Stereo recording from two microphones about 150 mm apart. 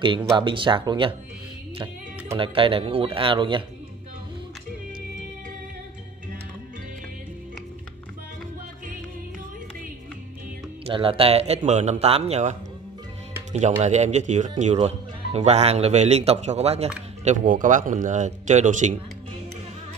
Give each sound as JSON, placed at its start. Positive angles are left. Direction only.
{"t": 0.0, "sound": "speech", "side_deg": -35}
{"t": 2.3, "sound": "speech", "side_deg": -35}
{"t": 10.9, "sound": "speech", "side_deg": -35}
{"t": 17.2, "sound": "speech", "side_deg": -55}